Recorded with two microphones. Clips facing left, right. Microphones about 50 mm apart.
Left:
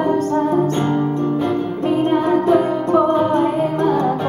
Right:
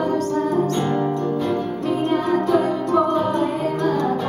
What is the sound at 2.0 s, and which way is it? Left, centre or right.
Music, left.